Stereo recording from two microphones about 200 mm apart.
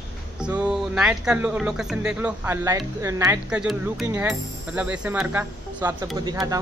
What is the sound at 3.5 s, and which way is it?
Speech, 5° right (ahead or behind).